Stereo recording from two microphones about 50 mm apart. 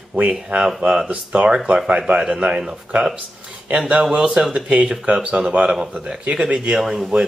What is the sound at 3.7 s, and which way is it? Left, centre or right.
Speech, right.